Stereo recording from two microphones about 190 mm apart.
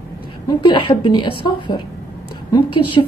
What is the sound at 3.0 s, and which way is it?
Speech, 20° left (ahead or behind).